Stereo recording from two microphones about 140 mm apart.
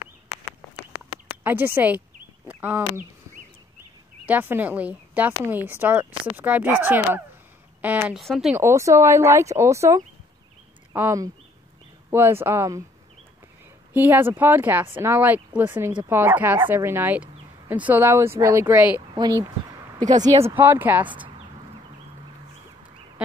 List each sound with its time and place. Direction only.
1.4 s speech: 15° right (ahead or behind)
4.3 s speech: 10° right (ahead or behind)
8.2 s speech: centre (ahead or behind)
8.5 s speech: 20° right (ahead or behind)
13.9 s speech: 15° right (ahead or behind)
19.1 s speech: 25° right (ahead or behind)
20.4 s speech: 15° right (ahead or behind)